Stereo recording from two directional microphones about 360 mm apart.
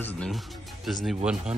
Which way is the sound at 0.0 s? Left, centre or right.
Centre.